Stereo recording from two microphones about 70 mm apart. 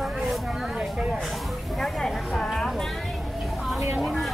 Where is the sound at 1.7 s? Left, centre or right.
Centre.